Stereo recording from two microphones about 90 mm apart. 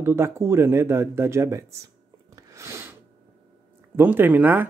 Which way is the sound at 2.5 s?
30° right (ahead or behind).